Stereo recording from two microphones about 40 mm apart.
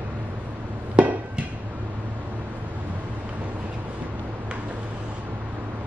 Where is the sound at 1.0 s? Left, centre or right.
Right.